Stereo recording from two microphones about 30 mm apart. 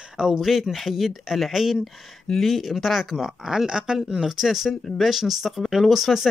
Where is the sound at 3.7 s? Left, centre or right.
Right; by 5.5 s centre.